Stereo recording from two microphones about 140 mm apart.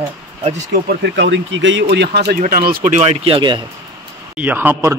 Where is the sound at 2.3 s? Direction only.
90° right; by 3.5 s 35° right (ahead or behind).